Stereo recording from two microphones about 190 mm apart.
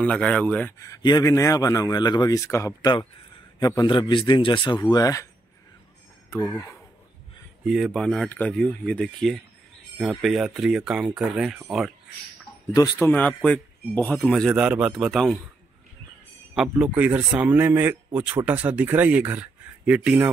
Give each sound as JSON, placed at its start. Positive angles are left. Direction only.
{"t": 0.0, "sound": "a man's voice", "side_deg": 5}
{"t": 6.4, "sound": "a man's voice", "side_deg": 10}
{"t": 7.6, "sound": "a man's voice", "side_deg": 0}
{"t": 12.7, "sound": "a man's voice", "side_deg": 20}
{"t": 13.1, "sound": "a man's voice", "side_deg": 5}
{"t": 16.5, "sound": "speech", "side_deg": -5}